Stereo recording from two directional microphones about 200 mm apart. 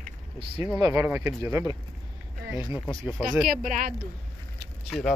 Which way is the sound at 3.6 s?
40° right (ahead or behind).